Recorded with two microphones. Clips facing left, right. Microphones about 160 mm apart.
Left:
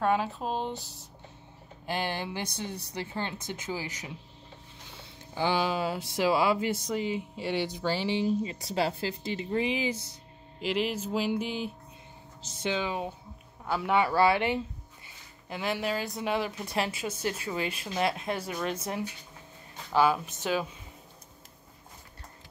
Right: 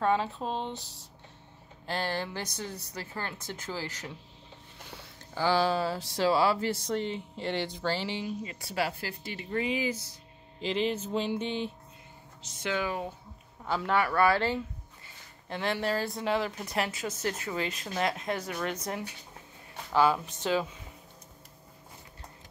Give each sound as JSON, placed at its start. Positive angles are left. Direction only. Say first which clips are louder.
{"t": 0.0, "sound": "speech", "louder": "even", "side_deg": 5}
{"t": 1.9, "sound": "speech", "louder": "even", "side_deg": 15}
{"t": 10.6, "sound": "a sound", "louder": "even", "side_deg": 5}
{"t": 12.6, "sound": "speech", "louder": "left 1 dB", "side_deg": 20}
{"t": 17.7, "sound": "speech", "louder": "left 1 dB", "side_deg": 15}
{"t": 19.9, "sound": "speech", "louder": "even", "side_deg": 15}